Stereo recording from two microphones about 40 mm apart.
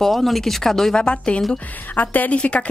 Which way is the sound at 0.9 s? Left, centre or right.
Left.